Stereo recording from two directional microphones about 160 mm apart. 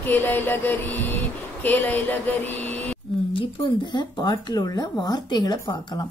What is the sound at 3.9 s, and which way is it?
Speech, 25° left (ahead or behind).